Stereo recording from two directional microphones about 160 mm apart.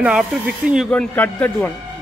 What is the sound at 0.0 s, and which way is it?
Speech, 5° right (ahead or behind).